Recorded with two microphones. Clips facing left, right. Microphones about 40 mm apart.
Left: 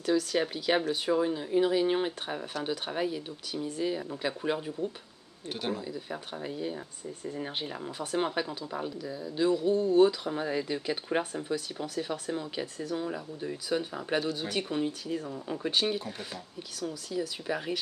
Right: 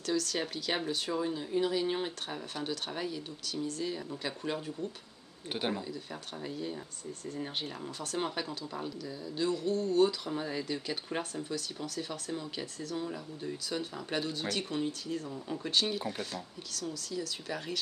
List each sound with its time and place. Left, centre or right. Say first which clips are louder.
0.0 s speech: left 5 dB; centre
5.5 s speech: even; centre
5.9 s speech: left 4 dB; centre